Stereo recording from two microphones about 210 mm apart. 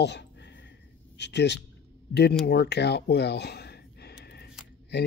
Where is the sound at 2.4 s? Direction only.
50° left (ahead or behind).